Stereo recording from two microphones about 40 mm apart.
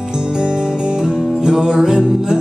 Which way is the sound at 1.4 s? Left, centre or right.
Centre.